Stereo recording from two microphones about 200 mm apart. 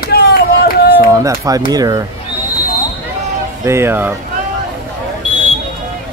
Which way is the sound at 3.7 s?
10° right (ahead or behind).